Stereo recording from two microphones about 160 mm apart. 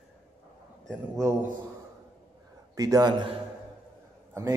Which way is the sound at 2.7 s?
20° right (ahead or behind).